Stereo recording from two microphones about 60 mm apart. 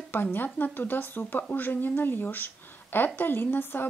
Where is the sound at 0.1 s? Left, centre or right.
Left.